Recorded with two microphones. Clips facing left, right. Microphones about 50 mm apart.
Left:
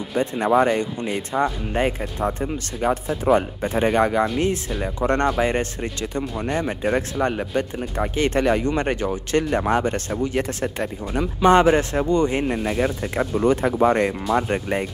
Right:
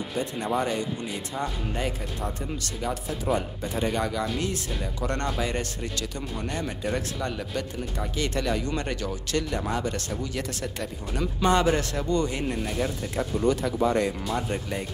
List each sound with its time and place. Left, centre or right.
0.2 s speech: left